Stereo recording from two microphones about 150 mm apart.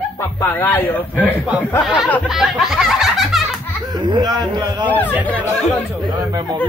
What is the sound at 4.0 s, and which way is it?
Speech, 30° right (ahead or behind).